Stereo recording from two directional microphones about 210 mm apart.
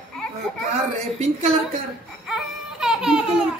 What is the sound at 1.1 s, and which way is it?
Speech, 30° right (ahead or behind).